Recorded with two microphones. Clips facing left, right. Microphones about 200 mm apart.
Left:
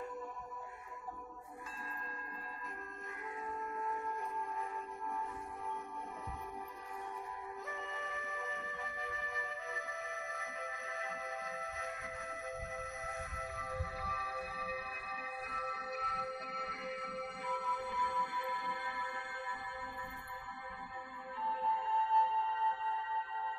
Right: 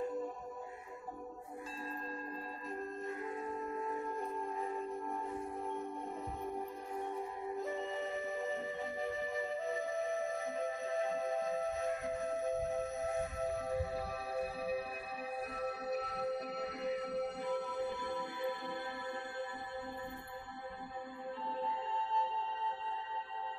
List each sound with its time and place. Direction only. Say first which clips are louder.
3.6 s music: right 2 dB; 30° right (ahead or behind)
7.0 s music: right 6 dB; 30° right (ahead or behind)
21.5 s music: left 3 dB; 30° right (ahead or behind)